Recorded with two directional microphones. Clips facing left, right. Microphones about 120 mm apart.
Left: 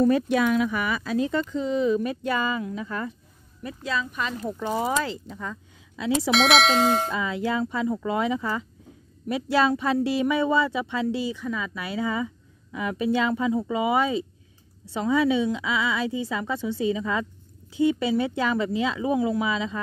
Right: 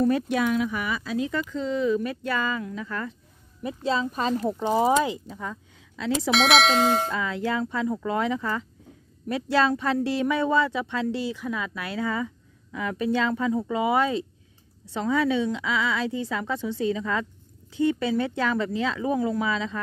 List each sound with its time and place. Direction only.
0.6 s speech: 75° left (ahead or behind)
1.5 s a woman's voice: 15° left (ahead or behind)
3.6 s speech: 25° right (ahead or behind)
4.5 s speech: 20° right (ahead or behind)
5.3 s speech: 5° right (ahead or behind)
5.9 s a woman's voice: 10° left (ahead or behind)